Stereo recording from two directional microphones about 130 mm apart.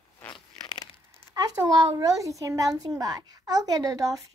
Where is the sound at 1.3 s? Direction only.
30° right (ahead or behind).